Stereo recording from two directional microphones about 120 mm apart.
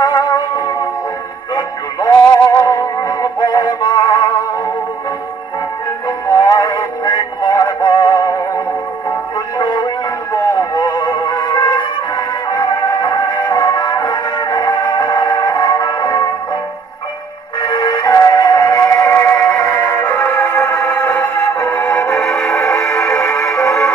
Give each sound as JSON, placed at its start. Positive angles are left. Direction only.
{"t": 0.0, "sound": "music", "side_deg": 35}
{"t": 6.3, "sound": "synthetic singing", "side_deg": 35}
{"t": 9.6, "sound": "music", "side_deg": 35}
{"t": 17.6, "sound": "music", "side_deg": 35}
{"t": 22.2, "sound": "music", "side_deg": 0}
{"t": 22.8, "sound": "music", "side_deg": 25}